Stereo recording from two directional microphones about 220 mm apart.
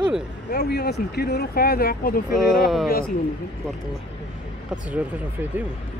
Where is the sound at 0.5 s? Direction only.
45° left (ahead or behind).